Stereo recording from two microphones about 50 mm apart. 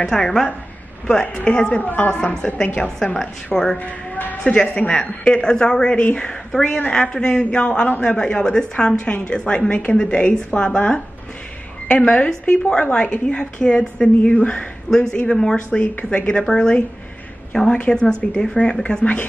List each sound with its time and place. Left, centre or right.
0.1 s speech: centre
1.3 s a woman's voice: centre
1.8 s a woman's voice: left
2.0 s speech: centre
3.7 s a man's voice: left
4.4 s a woman's voice: centre
15.8 s a woman's voice: left
16.4 s speech: centre